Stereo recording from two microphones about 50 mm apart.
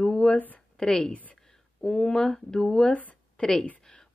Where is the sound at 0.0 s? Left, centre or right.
Centre.